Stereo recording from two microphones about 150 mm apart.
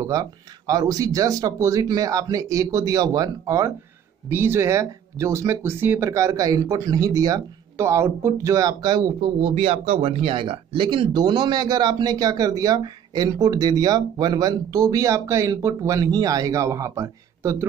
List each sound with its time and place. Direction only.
0.0 s speech: 25° right (ahead or behind)